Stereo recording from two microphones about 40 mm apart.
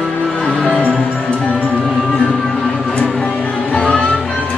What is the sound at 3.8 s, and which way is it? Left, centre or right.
Music, left.